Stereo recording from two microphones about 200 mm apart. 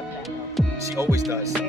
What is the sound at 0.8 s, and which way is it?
Speech, 15° right (ahead or behind).